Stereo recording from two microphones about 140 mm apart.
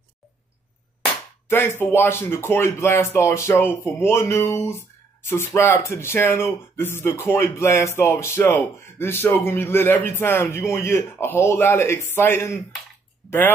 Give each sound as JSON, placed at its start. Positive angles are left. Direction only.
{"t": 1.5, "sound": "a man's voice", "side_deg": 15}